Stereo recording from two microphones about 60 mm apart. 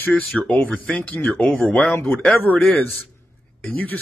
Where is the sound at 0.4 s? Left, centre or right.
Left.